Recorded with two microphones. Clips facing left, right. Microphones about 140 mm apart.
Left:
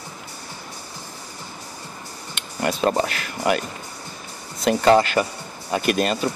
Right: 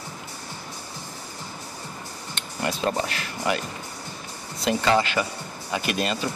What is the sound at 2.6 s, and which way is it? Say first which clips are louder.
Speech: left 5 dB; 60° left (ahead or behind).